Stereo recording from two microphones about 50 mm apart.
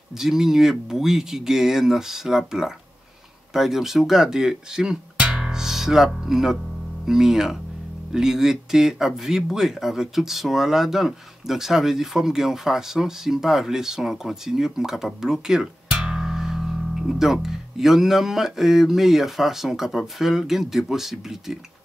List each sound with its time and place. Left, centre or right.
0.2 s speech: centre